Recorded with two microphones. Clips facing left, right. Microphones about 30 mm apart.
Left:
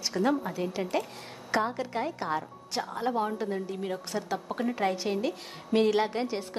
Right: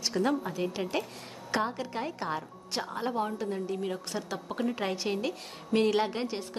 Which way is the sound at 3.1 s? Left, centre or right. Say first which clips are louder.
Left 2 dB; centre.